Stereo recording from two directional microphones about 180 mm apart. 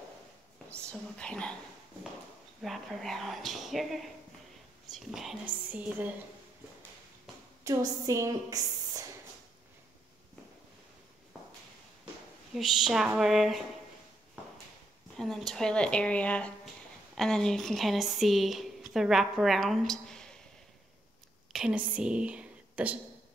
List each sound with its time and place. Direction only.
0.7 s a woman's voice: 5° left (ahead or behind)
2.6 s a woman's voice: centre (ahead or behind)
7.6 s a woman's voice: 15° right (ahead or behind)
12.5 s a woman's voice: centre (ahead or behind)
15.1 s a woman's voice: centre (ahead or behind)
21.5 s speech: 5° right (ahead or behind)